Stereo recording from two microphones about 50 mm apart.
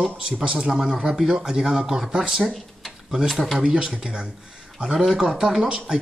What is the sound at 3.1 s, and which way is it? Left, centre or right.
Speech, centre.